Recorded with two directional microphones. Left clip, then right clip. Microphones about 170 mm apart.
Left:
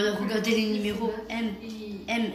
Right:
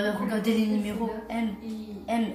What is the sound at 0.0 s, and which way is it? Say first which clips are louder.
A woman's voice: left 1 dB; 40° right (ahead or behind).